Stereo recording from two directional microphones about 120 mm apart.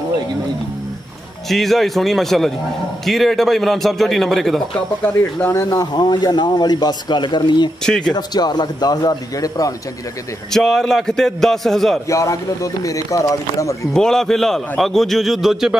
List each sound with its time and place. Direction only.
1.5 s a man's voice: centre (ahead or behind)
5.0 s speech: 20° left (ahead or behind)
5.7 s speech: 35° left (ahead or behind)
7.8 s a man's voice: 5° left (ahead or behind)
8.1 s speech: 35° left (ahead or behind)
10.5 s a man's voice: 5° left (ahead or behind)
12.1 s speech: 25° left (ahead or behind)
13.9 s a man's voice: 5° left (ahead or behind)